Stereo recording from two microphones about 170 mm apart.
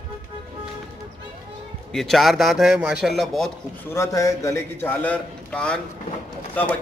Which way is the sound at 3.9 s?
15° left (ahead or behind).